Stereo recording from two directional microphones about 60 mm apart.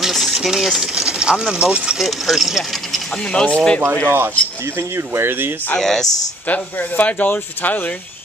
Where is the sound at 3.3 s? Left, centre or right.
Centre.